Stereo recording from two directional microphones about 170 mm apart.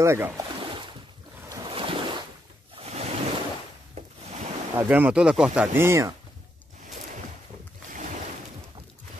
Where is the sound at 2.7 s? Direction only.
40° right (ahead or behind).